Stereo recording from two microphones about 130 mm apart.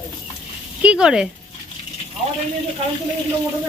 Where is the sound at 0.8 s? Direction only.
5° right (ahead or behind).